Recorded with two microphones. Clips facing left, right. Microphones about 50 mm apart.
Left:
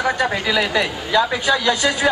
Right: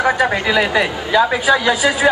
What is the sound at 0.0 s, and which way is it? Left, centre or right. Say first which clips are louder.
A woman's voice: right 4 dB; right.